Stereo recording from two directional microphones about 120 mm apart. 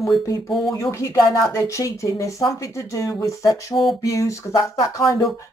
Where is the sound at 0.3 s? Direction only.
30° left (ahead or behind).